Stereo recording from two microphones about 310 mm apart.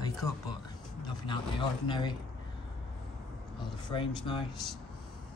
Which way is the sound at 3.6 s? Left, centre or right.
Centre.